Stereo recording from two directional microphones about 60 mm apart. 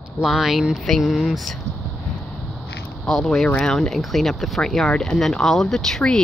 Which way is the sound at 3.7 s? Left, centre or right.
Centre.